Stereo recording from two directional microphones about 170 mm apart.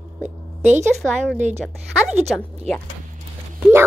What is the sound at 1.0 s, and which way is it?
A woman's voice, centre (ahead or behind).